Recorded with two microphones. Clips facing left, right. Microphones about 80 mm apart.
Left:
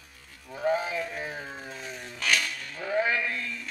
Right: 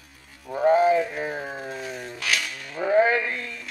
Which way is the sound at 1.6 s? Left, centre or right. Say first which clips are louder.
Right 6 dB; centre.